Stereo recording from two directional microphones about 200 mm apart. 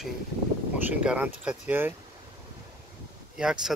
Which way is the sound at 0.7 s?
10° right (ahead or behind).